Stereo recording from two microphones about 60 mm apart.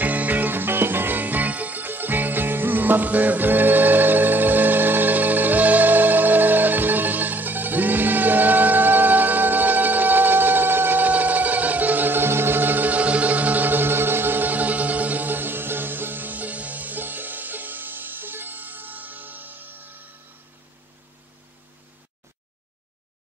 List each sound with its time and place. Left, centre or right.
0.0 s music: right